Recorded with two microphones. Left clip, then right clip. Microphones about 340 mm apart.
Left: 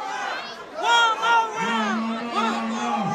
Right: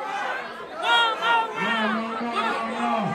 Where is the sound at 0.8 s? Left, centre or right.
Centre.